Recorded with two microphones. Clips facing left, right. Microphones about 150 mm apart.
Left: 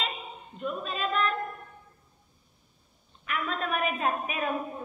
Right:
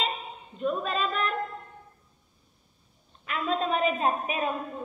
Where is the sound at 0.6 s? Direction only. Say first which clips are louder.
Right 5 dB; 35° right (ahead or behind).